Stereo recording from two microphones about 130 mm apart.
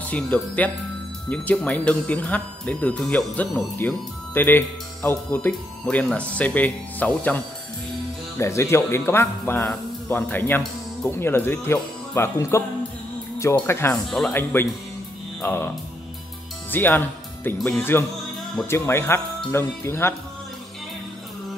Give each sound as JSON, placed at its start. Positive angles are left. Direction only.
{"t": 0.0, "sound": "speech", "side_deg": 10}
{"t": 8.4, "sound": "speech", "side_deg": 20}
{"t": 16.7, "sound": "speech", "side_deg": 15}